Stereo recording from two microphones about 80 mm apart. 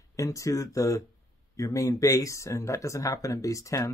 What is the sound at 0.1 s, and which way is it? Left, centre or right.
Speech, left.